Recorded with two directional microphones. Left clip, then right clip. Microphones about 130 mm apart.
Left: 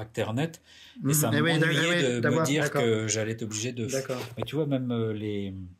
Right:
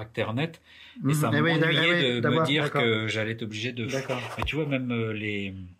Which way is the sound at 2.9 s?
20° left (ahead or behind).